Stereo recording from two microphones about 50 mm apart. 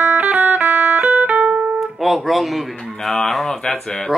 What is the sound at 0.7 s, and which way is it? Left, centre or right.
Music, right.